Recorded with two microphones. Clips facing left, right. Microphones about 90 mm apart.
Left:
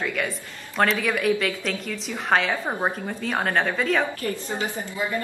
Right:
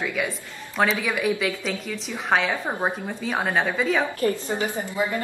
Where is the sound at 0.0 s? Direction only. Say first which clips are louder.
Even; 5° right (ahead or behind).